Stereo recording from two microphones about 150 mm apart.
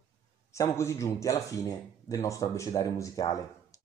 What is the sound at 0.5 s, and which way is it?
Speech, 20° left (ahead or behind).